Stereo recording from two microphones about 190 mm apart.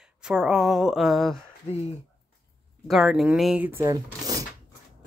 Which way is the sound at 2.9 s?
Centre (ahead or behind).